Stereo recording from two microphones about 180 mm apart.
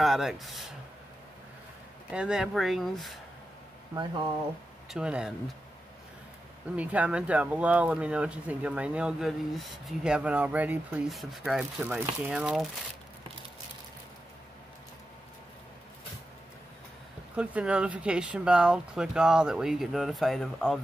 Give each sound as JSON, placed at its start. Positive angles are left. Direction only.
{"t": 0.0, "sound": "speech", "side_deg": 0}
{"t": 2.0, "sound": "speech", "side_deg": -5}
{"t": 3.9, "sound": "speech", "side_deg": -25}
{"t": 4.8, "sound": "speech", "side_deg": -5}
{"t": 6.8, "sound": "speech", "side_deg": -10}
{"t": 17.4, "sound": "speech", "side_deg": -5}